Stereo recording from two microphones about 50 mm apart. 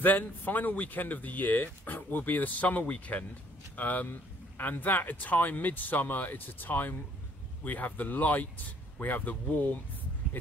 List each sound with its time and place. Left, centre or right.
0.0 s speech: left